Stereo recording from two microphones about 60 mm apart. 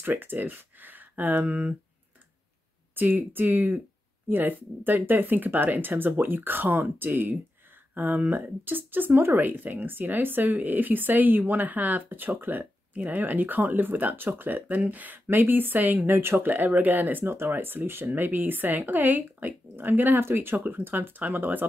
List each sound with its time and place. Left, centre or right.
0.0 s speech: right
2.9 s speech: right
16.1 s speech: right